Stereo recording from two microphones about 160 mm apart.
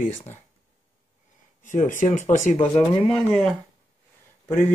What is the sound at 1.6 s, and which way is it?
Speech, 55° left (ahead or behind).